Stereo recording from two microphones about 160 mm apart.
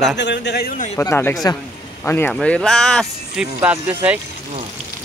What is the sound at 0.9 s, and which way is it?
Speech, 15° left (ahead or behind).